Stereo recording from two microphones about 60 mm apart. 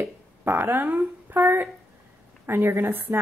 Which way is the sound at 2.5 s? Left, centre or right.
Right.